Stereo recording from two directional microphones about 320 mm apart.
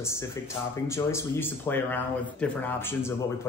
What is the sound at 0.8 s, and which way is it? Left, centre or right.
A man's voice, centre.